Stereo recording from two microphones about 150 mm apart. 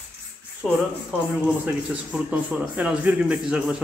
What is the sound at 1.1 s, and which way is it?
Speech, 10° right (ahead or behind).